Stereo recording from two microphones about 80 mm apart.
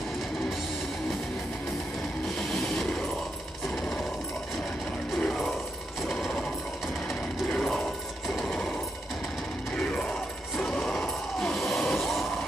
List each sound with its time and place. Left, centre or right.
2.5 s train: centre
5.1 s mechanisms: centre
6.0 s sewing machine: centre
7.4 s sewing machine: centre
9.8 s music: centre
10.6 s a sound: centre